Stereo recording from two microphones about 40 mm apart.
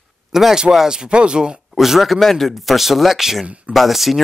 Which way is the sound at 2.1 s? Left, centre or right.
Centre.